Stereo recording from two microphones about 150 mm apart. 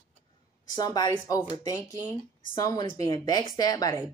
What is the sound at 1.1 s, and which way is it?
Speech, 15° left (ahead or behind).